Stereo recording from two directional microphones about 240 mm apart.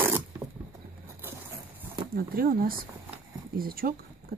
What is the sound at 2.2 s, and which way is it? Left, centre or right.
Speech, right.